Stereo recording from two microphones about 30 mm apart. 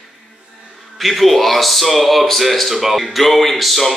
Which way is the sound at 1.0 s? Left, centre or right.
Centre.